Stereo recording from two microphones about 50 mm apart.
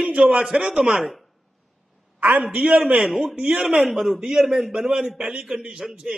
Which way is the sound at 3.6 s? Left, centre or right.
Centre.